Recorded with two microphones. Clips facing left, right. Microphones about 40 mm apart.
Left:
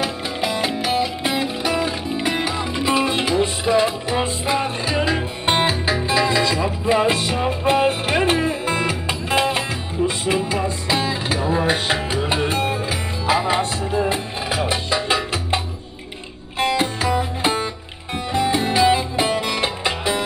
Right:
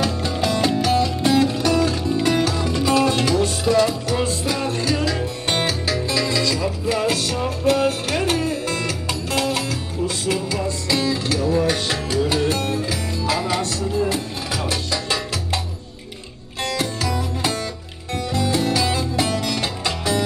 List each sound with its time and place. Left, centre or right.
0.0 s music: centre